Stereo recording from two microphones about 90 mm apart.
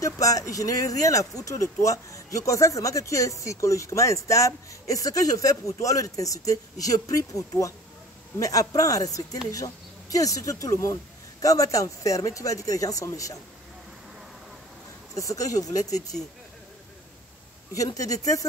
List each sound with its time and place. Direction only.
0.0 s speech: 40° left (ahead or behind)
15.1 s speech: 40° left (ahead or behind)
17.7 s speech: 40° left (ahead or behind)